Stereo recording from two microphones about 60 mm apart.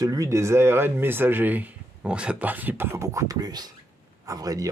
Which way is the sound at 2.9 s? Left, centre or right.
Right.